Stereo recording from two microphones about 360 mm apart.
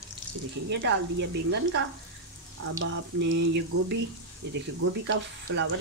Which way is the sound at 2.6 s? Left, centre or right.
Right.